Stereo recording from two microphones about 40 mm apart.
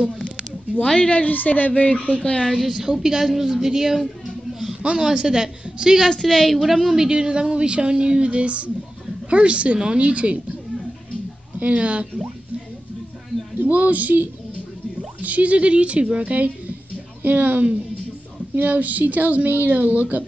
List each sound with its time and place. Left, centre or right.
0.9 s a woman's voice: left
1.2 s a woman's voice: left
2.0 s a woman's voice: centre
2.7 s a woman's voice: centre
6.2 s a woman's voice: centre
7.1 s a woman's voice: right
11.6 s speech: right
13.7 s speech: right
15.2 s speech: right
16.2 s a woman's voice: right